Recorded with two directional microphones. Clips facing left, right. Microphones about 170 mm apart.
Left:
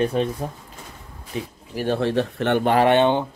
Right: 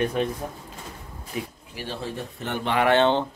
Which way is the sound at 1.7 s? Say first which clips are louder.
Left 17 dB; 45° left (ahead or behind).